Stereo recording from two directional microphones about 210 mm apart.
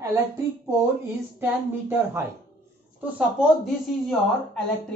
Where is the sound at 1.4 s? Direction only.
10° right (ahead or behind).